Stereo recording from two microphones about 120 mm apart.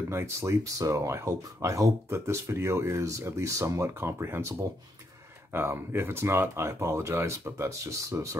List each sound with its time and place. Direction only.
0.1 s speech: 20° right (ahead or behind)